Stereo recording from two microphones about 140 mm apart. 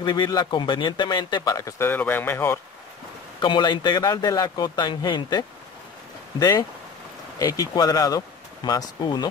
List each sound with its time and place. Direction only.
0.0 s speech: 30° left (ahead or behind); by 2.6 s 15° left (ahead or behind)
3.3 s speech: 35° left (ahead or behind)
7.3 s speech: 25° left (ahead or behind)